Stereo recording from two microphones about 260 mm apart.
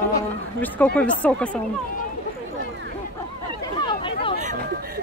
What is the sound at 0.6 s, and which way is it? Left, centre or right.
Speech, centre.